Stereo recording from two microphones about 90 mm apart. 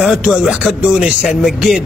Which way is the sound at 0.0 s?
10° right (ahead or behind).